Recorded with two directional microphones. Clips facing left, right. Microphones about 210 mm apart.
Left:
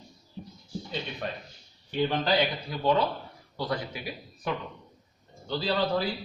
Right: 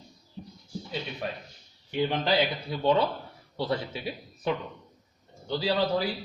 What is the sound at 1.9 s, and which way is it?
A man's voice, 15° right (ahead or behind).